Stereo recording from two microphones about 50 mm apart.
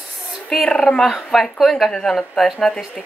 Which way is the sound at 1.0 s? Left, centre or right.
Centre.